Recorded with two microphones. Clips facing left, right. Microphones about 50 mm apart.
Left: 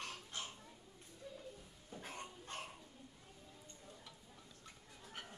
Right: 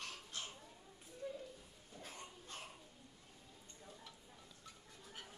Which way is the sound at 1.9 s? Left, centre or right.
Left.